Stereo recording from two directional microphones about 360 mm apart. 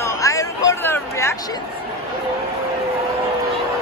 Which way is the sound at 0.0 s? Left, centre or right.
Centre.